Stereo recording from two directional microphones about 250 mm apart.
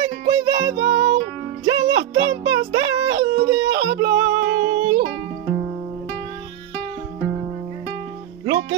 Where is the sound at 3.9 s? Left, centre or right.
Right.